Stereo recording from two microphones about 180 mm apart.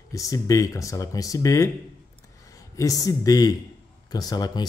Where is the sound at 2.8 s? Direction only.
20° left (ahead or behind).